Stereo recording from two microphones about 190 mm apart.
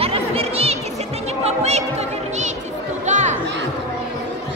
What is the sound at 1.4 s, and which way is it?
Music, 35° right (ahead or behind).